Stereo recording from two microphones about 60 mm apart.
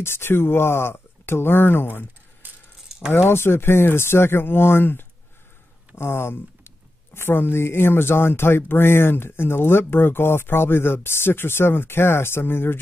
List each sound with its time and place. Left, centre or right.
0.0 s speech: left
2.4 s keys jangling: right
3.3 s speech: left